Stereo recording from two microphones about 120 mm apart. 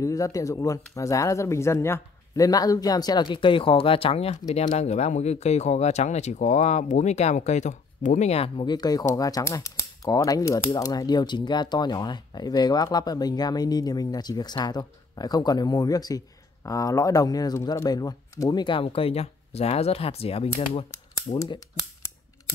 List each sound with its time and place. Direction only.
0.0 s speech: 30° left (ahead or behind); by 8.6 s 60° left (ahead or behind)
8.6 s speech: 35° left (ahead or behind); by 20.8 s 55° left (ahead or behind)
21.3 s mechanisms: 60° left (ahead or behind)